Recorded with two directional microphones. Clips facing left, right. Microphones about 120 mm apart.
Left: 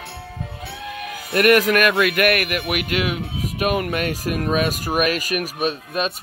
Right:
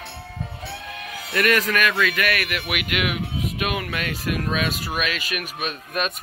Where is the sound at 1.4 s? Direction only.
55° left (ahead or behind).